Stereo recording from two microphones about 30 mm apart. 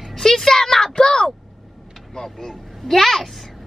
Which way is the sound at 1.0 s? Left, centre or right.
Left.